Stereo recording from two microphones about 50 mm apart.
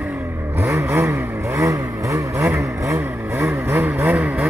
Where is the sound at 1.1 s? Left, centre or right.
Right.